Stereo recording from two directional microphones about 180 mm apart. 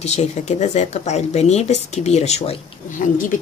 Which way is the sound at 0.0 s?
35° left (ahead or behind).